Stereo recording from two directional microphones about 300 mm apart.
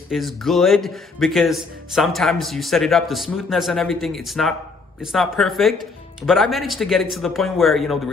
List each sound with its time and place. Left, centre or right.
0.1 s speech: centre